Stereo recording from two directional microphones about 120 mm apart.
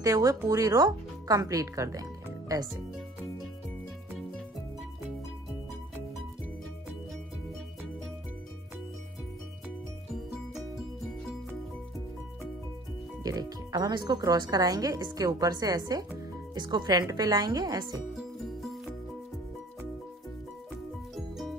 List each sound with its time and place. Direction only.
0.0 s speech: 25° right (ahead or behind)
13.2 s speech: 30° right (ahead or behind)
18.1 s music: centre (ahead or behind)
20.7 s music: centre (ahead or behind)